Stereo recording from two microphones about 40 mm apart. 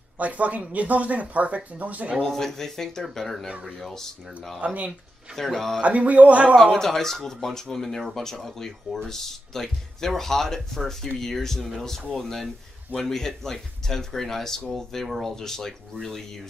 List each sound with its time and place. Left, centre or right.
0.2 s speech: right
2.2 s speech: centre
4.6 s speech: right
5.3 s speech: centre
5.8 s speech: right
6.5 s speech: centre